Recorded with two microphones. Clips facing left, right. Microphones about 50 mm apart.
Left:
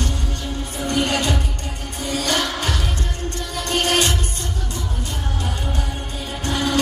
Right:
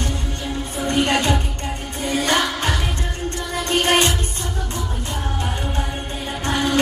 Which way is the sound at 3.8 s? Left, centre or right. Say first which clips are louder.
Right 2 dB; right.